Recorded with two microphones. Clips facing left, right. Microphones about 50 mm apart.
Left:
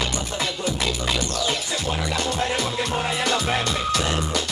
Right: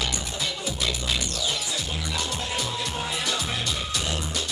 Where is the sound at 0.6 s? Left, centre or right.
Left.